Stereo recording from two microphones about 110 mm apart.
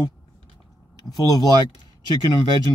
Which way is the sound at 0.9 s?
35° left (ahead or behind).